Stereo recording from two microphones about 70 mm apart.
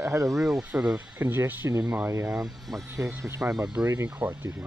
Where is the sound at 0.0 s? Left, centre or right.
Right.